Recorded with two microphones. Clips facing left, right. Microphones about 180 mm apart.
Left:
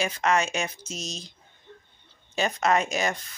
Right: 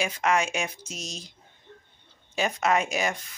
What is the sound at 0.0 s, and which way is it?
Speech, 10° right (ahead or behind).